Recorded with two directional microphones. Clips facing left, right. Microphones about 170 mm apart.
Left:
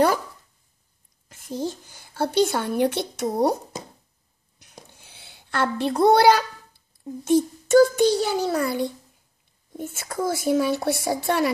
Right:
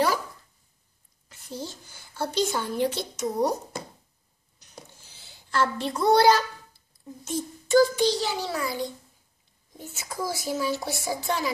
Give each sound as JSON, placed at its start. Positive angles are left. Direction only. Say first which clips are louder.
{"t": 1.3, "sound": "speech", "louder": "left 8 dB", "side_deg": 50}
{"t": 4.6, "sound": "a sound", "louder": "even", "side_deg": 60}
{"t": 7.2, "sound": "a child's voice", "louder": "left 10 dB", "side_deg": 55}